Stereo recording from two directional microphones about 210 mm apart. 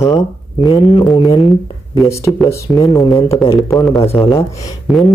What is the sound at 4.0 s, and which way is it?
Speech, 25° left (ahead or behind).